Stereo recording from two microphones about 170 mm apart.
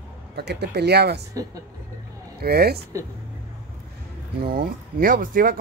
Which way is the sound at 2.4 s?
65° right (ahead or behind).